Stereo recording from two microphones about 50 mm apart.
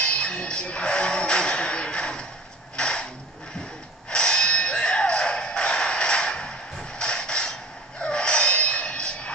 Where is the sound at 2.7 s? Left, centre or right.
Centre.